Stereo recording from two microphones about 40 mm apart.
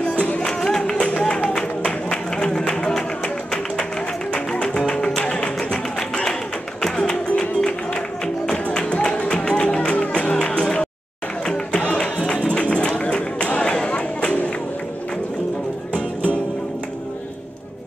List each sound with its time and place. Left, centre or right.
0.4 s music: centre
0.9 s music: left
4.3 s music: left
12.4 s bird: left